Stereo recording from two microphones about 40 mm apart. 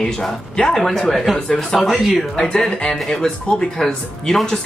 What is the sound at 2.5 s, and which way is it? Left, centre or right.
Speech, centre.